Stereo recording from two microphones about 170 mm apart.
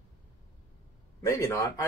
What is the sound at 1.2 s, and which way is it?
Speech, 15° left (ahead or behind).